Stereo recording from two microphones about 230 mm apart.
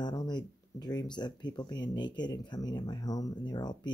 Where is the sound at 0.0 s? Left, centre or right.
Centre.